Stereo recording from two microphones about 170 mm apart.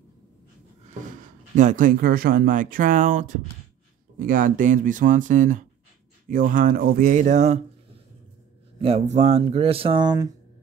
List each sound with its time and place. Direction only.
1.2 s speech: 50° right (ahead or behind)
8.8 s speech: 40° right (ahead or behind); by 10.3 s 25° right (ahead or behind)